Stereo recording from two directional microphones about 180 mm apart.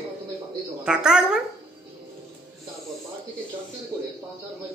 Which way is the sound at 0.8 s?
5° right (ahead or behind).